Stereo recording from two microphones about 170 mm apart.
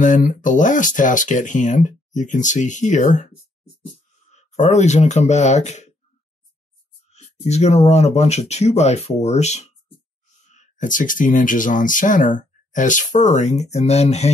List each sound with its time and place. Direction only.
0.0 s speech: 50° left (ahead or behind)
4.3 s speech: 40° left (ahead or behind)
7.4 s speech: 40° left (ahead or behind)